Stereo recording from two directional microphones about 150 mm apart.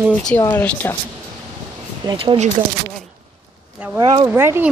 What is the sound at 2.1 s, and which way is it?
Speech, 35° right (ahead or behind).